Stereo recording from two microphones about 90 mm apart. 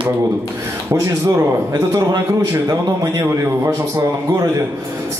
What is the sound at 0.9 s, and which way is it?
A man's voice, 35° right (ahead or behind).